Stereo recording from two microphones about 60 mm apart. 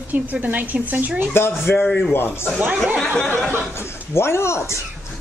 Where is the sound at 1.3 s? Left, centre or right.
Left.